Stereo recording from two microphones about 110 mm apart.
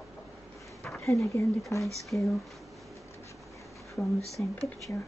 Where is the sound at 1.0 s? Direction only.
25° left (ahead or behind).